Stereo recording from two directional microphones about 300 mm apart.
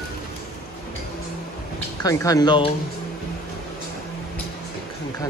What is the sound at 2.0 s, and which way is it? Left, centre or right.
Speech, centre.